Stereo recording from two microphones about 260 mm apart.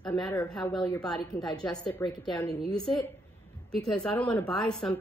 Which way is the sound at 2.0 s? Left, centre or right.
Centre.